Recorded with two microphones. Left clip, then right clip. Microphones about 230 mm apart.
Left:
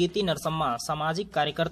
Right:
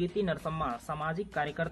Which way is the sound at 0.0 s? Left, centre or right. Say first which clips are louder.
Left 6 dB; centre.